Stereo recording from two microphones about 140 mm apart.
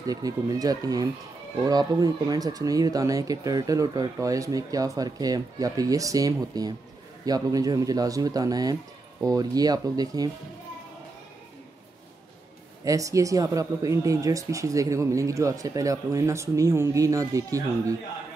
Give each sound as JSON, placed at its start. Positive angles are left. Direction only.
{"t": 0.0, "sound": "speech", "side_deg": -25}
{"t": 12.8, "sound": "speech", "side_deg": -25}